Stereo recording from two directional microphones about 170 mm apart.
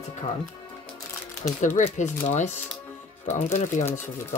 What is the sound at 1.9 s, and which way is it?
Speech, 45° left (ahead or behind).